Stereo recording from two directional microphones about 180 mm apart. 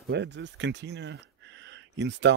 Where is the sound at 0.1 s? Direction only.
80° right.